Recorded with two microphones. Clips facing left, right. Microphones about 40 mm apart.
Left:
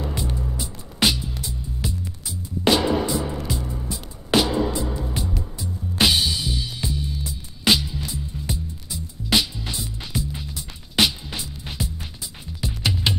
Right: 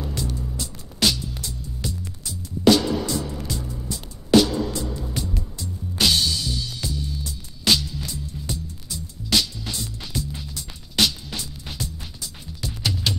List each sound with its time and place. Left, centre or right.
0.0 s music: left